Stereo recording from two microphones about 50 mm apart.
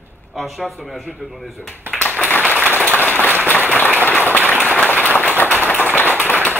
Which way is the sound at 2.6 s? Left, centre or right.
Left.